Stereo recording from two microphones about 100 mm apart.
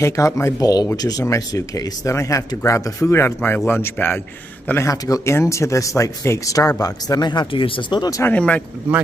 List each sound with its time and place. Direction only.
0.0 s speech: 30° left (ahead or behind)
4.8 s speech: 35° left (ahead or behind)
7.6 s speech: 60° left (ahead or behind)
8.2 s speech: 15° left (ahead or behind)